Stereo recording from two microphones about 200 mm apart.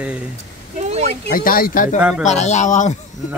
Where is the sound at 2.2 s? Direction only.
35° left (ahead or behind).